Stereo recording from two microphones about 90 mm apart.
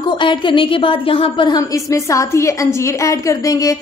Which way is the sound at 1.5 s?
40° left (ahead or behind).